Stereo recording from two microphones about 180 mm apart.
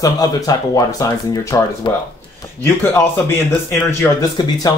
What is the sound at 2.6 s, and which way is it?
Speech, 10° left (ahead or behind).